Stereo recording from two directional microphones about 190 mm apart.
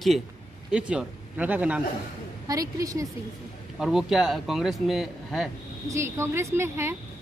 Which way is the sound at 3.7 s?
Centre (ahead or behind).